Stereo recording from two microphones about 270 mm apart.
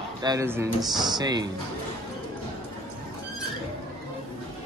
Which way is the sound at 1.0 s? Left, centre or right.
Centre.